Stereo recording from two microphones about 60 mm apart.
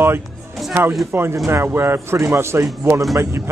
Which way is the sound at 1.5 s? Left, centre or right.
Right.